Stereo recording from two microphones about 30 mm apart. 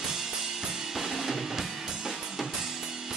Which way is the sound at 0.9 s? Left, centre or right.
Centre.